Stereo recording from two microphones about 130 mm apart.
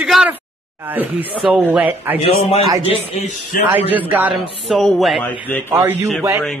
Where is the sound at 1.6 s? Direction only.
15° right (ahead or behind).